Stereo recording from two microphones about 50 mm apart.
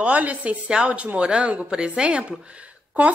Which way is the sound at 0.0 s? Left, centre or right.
Right.